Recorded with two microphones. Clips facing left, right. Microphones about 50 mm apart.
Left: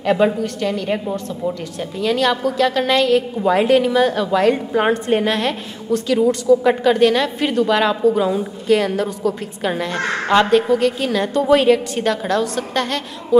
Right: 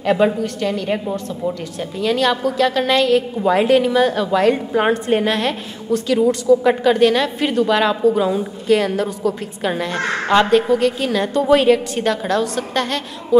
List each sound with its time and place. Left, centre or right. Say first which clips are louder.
0.0 s a woman's voice: even; centre
8.6 s a woman's voice: even; right
9.6 s a woman's voice: even; centre
11.0 s a woman's voice: even; centre